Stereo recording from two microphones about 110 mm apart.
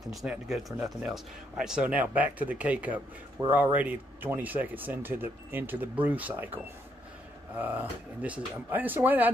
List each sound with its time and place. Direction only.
0.0 s speech: centre (ahead or behind)